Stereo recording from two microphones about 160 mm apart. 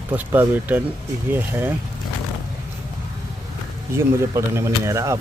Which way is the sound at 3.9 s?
15° right (ahead or behind).